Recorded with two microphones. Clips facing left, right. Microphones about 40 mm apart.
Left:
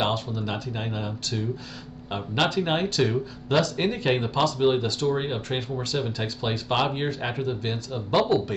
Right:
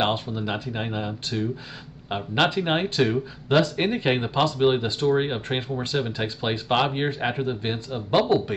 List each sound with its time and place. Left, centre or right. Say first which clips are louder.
0.0 s speech: right 2 dB; right